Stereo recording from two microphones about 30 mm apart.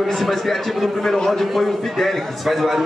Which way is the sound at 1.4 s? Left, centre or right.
Centre.